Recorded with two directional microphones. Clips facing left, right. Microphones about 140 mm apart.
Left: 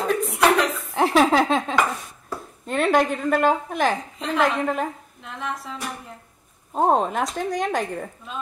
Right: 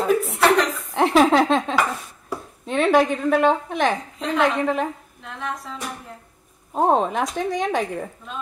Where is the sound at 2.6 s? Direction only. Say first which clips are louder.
Right 2 dB; centre (ahead or behind).